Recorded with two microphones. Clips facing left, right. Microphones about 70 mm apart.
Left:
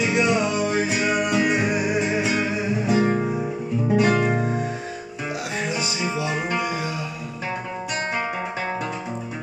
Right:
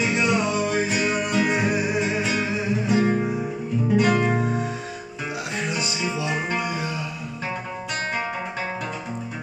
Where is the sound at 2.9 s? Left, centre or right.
Left.